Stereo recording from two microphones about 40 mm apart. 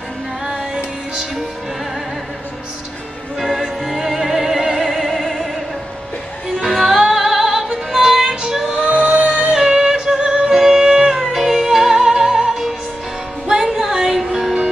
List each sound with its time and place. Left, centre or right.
3.3 s music: centre
6.6 s music: centre
8.7 s music: right
9.5 s music: centre
12.0 s music: right
14.0 s music: centre